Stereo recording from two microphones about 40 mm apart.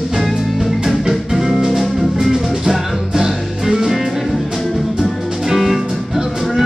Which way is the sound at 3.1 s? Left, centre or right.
Centre.